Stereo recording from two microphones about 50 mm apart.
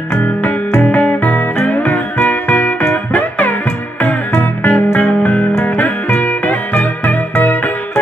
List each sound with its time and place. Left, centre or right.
0.1 s music: left